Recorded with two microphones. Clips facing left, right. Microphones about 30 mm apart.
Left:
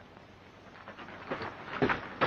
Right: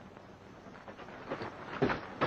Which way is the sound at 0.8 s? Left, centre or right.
Left.